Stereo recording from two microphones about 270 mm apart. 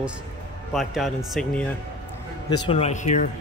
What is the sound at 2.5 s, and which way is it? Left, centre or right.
Speech, left.